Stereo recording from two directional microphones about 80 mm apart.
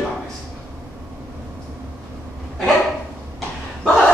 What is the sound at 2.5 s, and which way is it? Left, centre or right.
Dog, centre.